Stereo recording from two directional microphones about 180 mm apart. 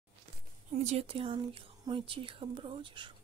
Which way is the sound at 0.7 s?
35° right (ahead or behind).